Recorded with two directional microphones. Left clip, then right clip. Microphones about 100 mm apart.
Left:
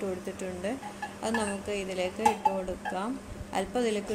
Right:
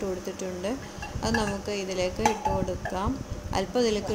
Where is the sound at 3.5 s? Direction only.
10° right (ahead or behind).